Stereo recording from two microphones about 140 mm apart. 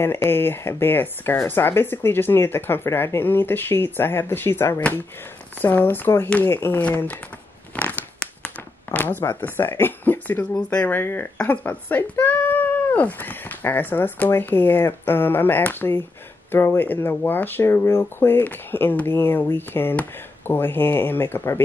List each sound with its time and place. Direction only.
0.0 s speech: 15° left (ahead or behind)
7.7 s a sound: 10° left (ahead or behind)
8.9 s speech: 15° left (ahead or behind)